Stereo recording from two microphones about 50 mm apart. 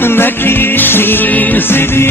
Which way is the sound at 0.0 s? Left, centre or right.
Left.